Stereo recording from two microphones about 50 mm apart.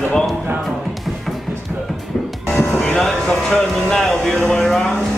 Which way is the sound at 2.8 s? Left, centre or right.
Centre.